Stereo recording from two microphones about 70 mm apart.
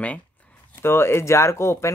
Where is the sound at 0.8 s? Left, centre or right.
Left.